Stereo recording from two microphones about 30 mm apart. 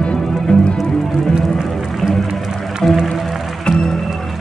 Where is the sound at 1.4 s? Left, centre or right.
Centre.